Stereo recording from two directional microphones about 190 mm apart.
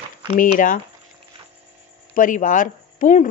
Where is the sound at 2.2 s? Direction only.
45° left (ahead or behind).